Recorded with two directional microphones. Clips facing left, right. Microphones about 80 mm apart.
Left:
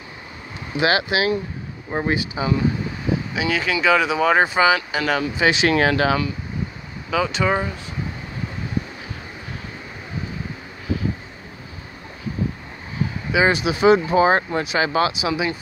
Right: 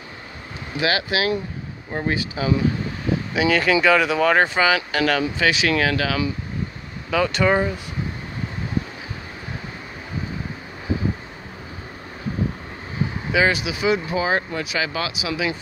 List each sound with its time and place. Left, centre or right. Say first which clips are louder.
0.7 s speech: left 3 dB; left
3.3 s speech: right 7 dB; centre
5.4 s speech: left 5 dB; left
7.1 s speech: right 1 dB; centre
13.3 s speech: left 2 dB; left